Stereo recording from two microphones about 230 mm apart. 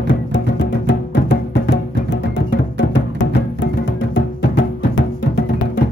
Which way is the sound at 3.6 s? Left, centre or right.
Left.